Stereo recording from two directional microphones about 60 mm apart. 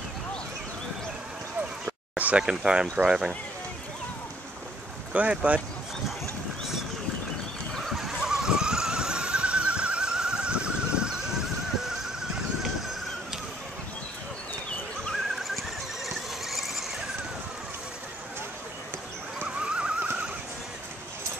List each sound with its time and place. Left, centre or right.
2.1 s a sound: right
2.4 s speech: centre
5.1 s speech: right
7.7 s neigh: centre
8.0 s vehicle: centre
16.4 s squeal: centre
19.4 s horse: centre